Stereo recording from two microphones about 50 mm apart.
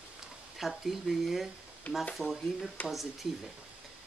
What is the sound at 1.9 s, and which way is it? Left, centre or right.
Speech, left.